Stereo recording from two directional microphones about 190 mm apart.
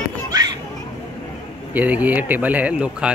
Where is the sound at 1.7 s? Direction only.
10° right (ahead or behind).